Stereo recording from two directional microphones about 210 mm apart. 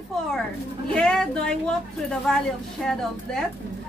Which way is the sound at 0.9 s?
5° left (ahead or behind).